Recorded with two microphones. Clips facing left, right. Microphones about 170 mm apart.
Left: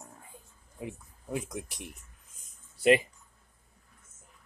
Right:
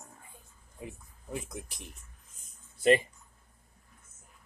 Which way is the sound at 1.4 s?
75° left (ahead or behind).